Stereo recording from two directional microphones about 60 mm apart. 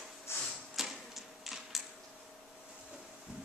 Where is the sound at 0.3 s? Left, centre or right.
Left.